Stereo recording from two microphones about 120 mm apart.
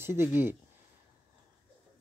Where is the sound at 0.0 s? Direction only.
20° right (ahead or behind).